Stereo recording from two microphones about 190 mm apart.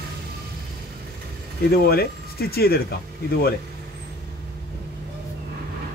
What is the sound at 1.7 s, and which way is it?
Speech, 55° left (ahead or behind).